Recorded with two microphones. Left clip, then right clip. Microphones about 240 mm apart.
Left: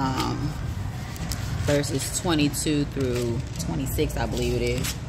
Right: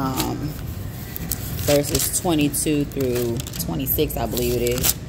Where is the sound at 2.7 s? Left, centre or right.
Left.